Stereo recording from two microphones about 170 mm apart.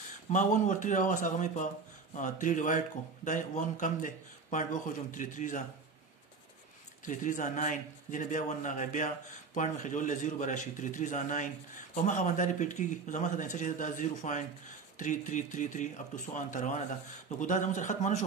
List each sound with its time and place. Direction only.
0.3 s a man's voice: 50° left (ahead or behind)
7.1 s a man's voice: 50° left (ahead or behind)